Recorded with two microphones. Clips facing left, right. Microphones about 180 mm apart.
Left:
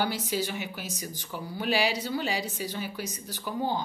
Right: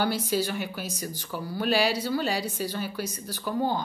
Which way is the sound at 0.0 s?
15° left (ahead or behind).